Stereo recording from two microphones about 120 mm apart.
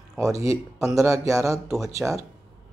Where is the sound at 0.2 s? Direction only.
25° right (ahead or behind).